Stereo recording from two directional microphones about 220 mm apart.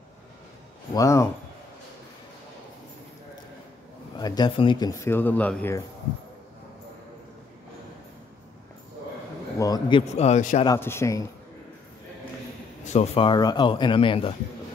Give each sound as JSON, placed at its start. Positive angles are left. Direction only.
{"t": 0.9, "sound": "speech", "side_deg": 15}
{"t": 4.2, "sound": "speech", "side_deg": 20}
{"t": 9.6, "sound": "a man's voice", "side_deg": 20}
{"t": 10.6, "sound": "speech", "side_deg": 15}
{"t": 12.8, "sound": "a man's voice", "side_deg": 30}